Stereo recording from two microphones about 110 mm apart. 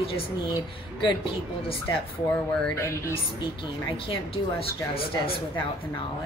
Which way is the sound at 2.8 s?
25° left (ahead or behind).